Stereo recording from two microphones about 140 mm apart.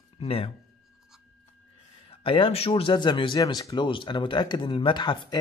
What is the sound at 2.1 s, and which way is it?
Speech, 40° left (ahead or behind).